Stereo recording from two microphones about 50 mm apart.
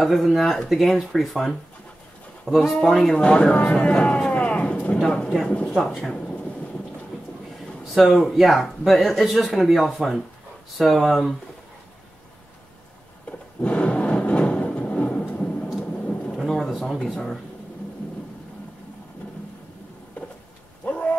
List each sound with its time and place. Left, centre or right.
0.0 s speech: centre
3.2 s speech: left
3.7 s a sound: left
4.9 s speech: centre
5.9 s speech: centre
7.8 s speech: centre
13.6 s a sound: left
15.8 s vehicle: left
16.9 s speech: centre
20.2 s a sound: left